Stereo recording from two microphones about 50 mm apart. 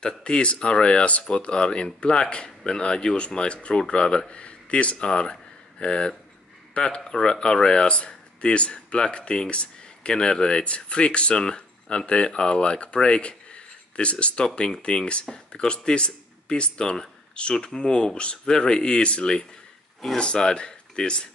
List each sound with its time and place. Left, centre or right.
0.0 s speech: centre